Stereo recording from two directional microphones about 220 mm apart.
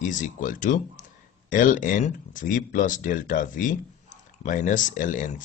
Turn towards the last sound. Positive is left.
turn(degrees=35)  # may be behind; listen again after turning